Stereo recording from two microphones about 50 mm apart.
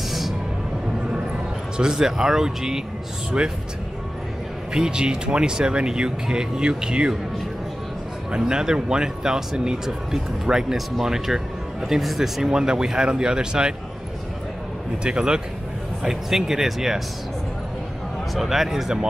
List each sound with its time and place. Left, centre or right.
1.8 s speech: centre
4.7 s speech: centre
8.3 s speech: centre
15.0 s speech: centre
16.0 s speech: centre
18.3 s speech: centre